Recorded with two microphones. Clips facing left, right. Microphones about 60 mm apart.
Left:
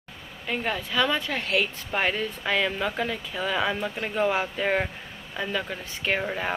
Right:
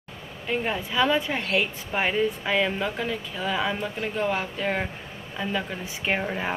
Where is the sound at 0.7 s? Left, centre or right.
Centre.